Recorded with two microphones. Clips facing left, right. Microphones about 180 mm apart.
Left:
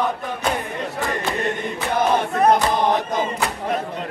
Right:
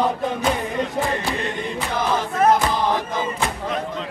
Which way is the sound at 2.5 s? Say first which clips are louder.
Left 2 dB; 20° left (ahead or behind).